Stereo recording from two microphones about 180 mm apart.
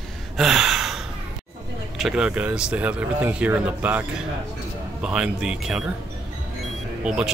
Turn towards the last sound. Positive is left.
turn(degrees=-5)  # may be behind; listen again after turning